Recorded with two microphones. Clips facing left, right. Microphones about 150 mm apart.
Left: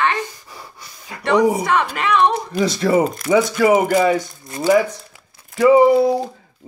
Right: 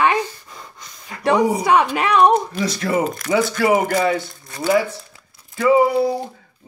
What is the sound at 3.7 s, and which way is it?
Speech, 15° left (ahead or behind).